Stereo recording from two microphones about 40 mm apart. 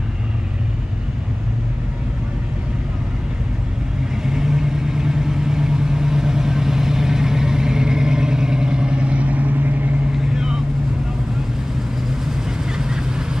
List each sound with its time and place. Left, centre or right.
4.2 s vehicle: centre; by 9.9 s right
10.1 s vehicle: centre
12.3 s vehicle: centre